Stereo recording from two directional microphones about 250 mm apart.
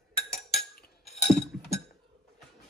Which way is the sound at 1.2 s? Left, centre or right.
Left.